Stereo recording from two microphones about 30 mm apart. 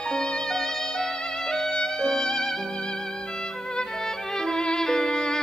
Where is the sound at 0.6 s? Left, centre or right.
Centre.